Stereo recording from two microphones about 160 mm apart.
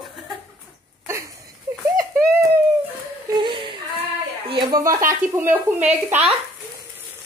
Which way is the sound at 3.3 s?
30° right (ahead or behind).